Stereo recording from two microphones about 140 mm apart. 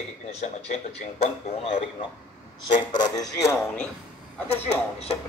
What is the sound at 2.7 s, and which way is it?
Speech, 30° left (ahead or behind).